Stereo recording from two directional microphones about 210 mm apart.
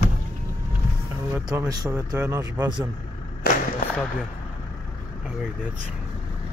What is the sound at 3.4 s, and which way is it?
Speech, 45° left (ahead or behind).